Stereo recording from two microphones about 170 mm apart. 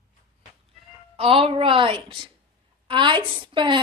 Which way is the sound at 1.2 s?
35° right (ahead or behind).